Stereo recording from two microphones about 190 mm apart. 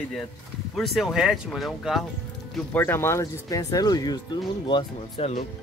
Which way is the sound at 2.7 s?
10° left (ahead or behind).